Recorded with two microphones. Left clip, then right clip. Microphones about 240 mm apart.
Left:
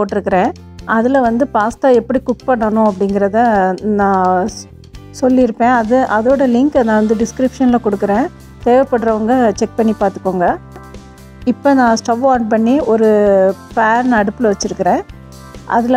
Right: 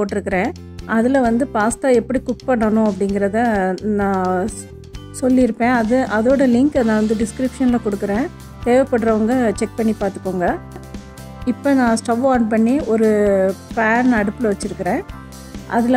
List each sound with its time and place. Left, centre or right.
0.0 s speech: centre
12.0 s speech: centre